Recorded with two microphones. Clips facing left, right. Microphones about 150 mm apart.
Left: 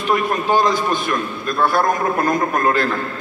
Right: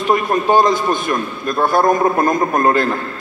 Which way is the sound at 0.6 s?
45° right (ahead or behind).